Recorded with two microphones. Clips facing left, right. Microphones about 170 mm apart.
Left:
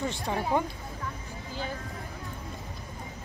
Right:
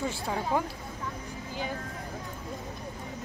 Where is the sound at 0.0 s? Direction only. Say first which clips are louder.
Left 1 dB; centre (ahead or behind).